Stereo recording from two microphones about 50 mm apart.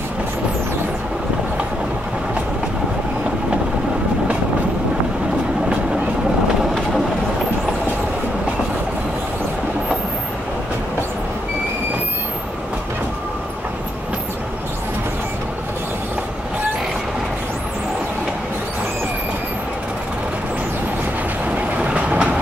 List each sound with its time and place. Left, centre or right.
21.5 s train: right